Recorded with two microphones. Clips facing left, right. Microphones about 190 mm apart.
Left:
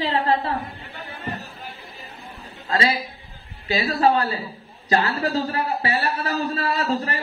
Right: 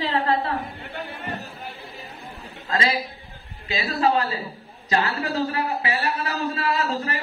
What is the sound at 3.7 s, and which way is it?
A man's voice, 35° left (ahead or behind).